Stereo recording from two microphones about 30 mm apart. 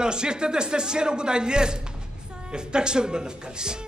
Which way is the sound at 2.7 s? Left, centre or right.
Right.